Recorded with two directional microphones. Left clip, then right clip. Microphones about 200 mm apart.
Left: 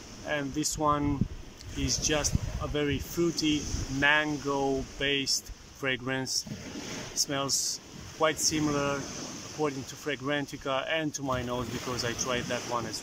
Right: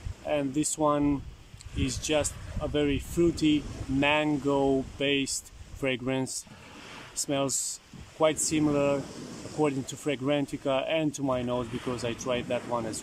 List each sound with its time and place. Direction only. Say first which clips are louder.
0.3 s speech: right 3 dB; 15° right (ahead or behind)